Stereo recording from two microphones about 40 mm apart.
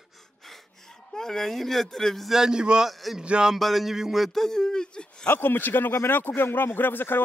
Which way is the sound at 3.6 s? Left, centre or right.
Centre.